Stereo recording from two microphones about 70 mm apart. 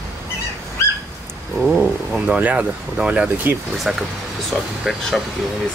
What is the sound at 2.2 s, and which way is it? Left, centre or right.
Speech, right.